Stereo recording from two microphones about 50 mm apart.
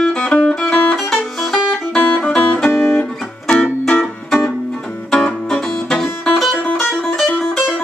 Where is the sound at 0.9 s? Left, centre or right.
Centre.